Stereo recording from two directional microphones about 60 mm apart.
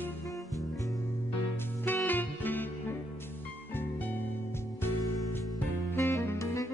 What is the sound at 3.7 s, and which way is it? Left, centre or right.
Music, left.